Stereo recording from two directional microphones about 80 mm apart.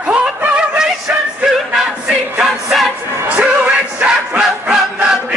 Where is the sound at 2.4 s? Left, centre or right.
Centre.